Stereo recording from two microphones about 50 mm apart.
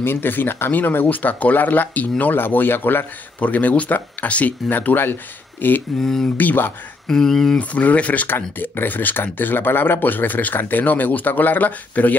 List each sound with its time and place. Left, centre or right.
0.0 s speech: left
3.3 s speech: left
5.9 s speech: centre
6.3 s speech: left
7.1 s speech: centre
7.5 s speech: left
8.3 s speech: left